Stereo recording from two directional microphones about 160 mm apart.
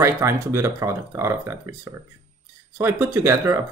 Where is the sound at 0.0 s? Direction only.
15° right (ahead or behind).